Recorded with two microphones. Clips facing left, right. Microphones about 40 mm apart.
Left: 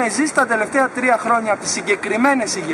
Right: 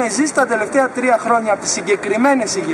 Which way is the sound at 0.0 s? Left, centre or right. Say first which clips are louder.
Right 1 dB; centre.